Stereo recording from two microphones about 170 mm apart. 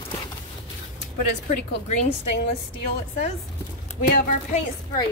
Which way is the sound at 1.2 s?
45° left (ahead or behind).